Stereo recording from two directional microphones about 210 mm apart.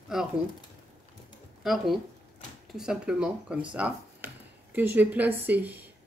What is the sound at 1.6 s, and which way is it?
Speech, centre (ahead or behind).